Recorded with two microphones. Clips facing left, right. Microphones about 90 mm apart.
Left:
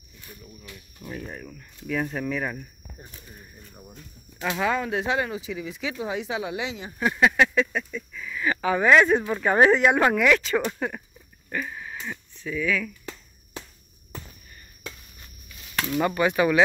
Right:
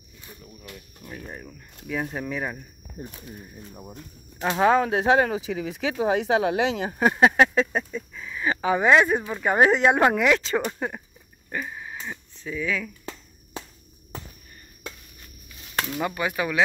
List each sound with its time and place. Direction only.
1.1 s speech: 10° right (ahead or behind)
4.6 s speech: 45° right (ahead or behind); by 7.0 s 70° right (ahead or behind)
7.0 s speech: 40° right (ahead or behind); by 11.0 s 20° right (ahead or behind)
11.5 s a sound: 20° right (ahead or behind)
15.8 s speech: 5° right (ahead or behind)